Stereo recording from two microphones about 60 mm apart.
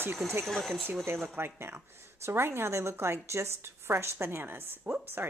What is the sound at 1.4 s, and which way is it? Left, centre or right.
A woman's voice, right.